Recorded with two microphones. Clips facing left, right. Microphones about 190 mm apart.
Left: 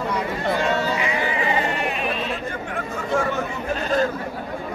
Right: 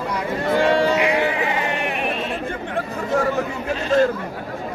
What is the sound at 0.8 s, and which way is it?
Music, 70° right (ahead or behind).